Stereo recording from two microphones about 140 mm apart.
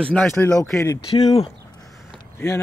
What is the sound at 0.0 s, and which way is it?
Speech, 10° left (ahead or behind).